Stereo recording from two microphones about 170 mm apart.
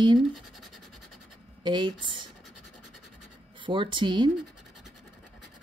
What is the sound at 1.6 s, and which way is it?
Speech, 25° right (ahead or behind).